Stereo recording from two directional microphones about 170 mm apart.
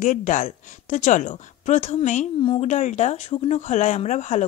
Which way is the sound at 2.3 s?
30° left (ahead or behind).